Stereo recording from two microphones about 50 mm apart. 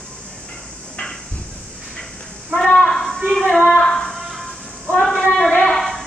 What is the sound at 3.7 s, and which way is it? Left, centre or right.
Female singing, centre.